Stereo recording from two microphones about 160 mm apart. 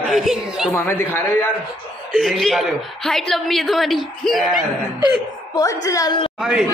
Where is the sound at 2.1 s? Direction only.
Centre (ahead or behind).